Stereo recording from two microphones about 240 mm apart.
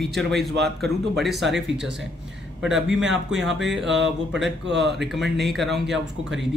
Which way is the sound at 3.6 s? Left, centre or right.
Right.